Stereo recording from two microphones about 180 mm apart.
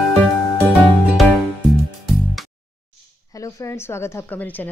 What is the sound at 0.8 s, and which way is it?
Music, centre (ahead or behind).